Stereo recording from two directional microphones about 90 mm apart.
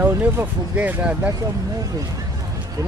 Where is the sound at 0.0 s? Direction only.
20° right (ahead or behind).